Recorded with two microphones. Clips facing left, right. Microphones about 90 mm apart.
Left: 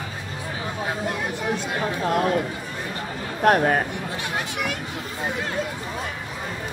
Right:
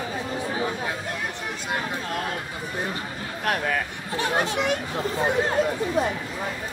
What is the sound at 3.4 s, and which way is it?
Speech, 40° left (ahead or behind).